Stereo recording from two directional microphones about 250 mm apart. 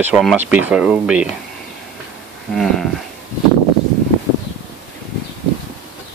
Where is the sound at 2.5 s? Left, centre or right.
Centre.